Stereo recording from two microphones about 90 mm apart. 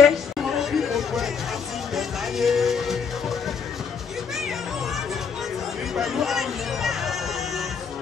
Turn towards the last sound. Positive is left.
turn(degrees=0)  # may be behind; listen again after turning